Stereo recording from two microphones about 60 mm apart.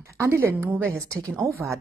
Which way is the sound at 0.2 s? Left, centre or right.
Right.